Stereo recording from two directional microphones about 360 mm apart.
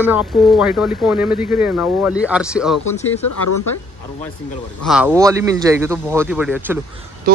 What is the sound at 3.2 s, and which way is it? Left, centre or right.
Speech, left.